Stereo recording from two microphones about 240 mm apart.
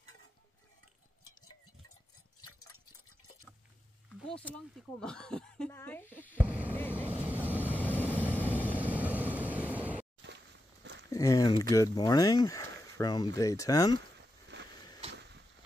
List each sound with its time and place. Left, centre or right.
4.3 s speech: centre
6.4 s speech: centre
6.7 s vehicle: centre
7.1 s vehicle: centre
7.8 s vehicle: centre
8.7 s vehicle: centre
10.8 s a sound: right
11.1 s speech: centre
14.5 s a sound: right